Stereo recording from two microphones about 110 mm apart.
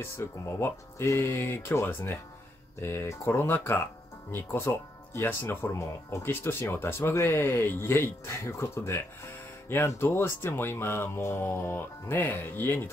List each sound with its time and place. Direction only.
0.0 s speech: 25° left (ahead or behind)